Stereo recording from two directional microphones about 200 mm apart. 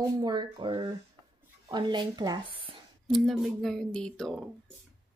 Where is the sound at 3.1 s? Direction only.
Centre (ahead or behind).